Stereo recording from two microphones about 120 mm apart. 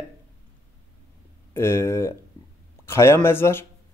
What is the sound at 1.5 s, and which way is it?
Speech, 20° left (ahead or behind).